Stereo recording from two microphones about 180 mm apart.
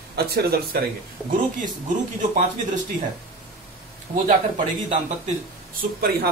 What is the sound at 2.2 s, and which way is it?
Speech, 45° right (ahead or behind).